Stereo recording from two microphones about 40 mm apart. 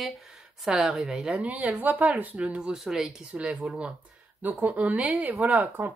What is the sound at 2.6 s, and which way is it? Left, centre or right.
Speech, centre.